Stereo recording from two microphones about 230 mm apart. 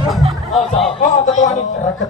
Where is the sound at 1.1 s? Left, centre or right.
Left.